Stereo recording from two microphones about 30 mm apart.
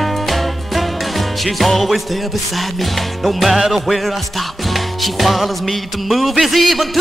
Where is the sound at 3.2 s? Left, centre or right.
Centre.